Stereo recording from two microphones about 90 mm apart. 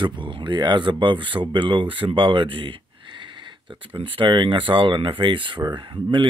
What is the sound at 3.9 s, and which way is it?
Speech, 75° right (ahead or behind).